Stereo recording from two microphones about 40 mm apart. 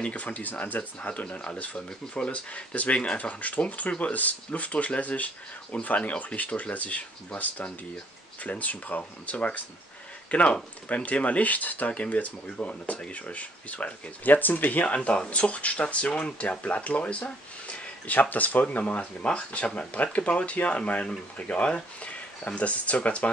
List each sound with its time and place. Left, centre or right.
0.1 s speech: left
2.3 s speech: left
14.2 s speech: left
15.0 s speech: left
18.3 s speech: left
21.5 s speech: left